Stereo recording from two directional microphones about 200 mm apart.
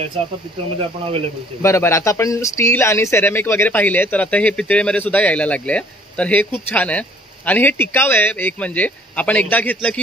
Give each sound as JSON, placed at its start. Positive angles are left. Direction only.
{"t": 0.7, "sound": "speech", "side_deg": -30}
{"t": 1.6, "sound": "speech", "side_deg": 15}